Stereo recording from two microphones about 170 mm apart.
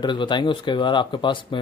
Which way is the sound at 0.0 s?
25° left (ahead or behind).